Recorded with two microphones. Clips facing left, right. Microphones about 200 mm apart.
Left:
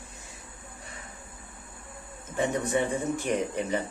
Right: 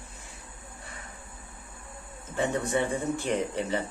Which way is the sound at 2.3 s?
15° left (ahead or behind).